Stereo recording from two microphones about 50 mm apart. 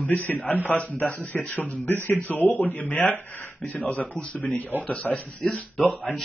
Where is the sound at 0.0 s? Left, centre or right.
Left.